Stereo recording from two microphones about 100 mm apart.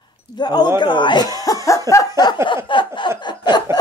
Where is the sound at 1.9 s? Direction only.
35° left (ahead or behind).